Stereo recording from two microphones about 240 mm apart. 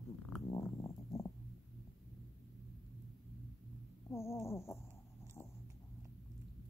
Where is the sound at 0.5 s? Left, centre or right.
Centre.